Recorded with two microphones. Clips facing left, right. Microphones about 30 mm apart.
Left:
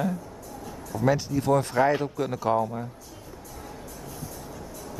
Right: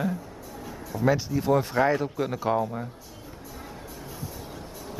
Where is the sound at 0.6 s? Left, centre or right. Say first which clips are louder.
Even; centre.